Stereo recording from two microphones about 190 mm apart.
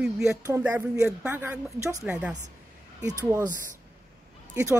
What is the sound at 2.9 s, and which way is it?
Speech, 20° right (ahead or behind).